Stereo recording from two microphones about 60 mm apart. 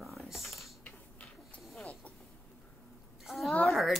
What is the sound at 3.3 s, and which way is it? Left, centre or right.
Speech, centre.